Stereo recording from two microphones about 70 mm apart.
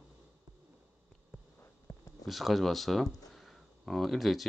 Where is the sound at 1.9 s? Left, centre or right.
Left.